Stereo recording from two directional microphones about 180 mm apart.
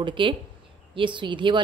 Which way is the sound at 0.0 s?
30° right (ahead or behind).